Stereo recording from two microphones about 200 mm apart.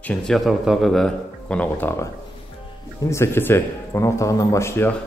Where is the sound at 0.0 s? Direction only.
5° left (ahead or behind).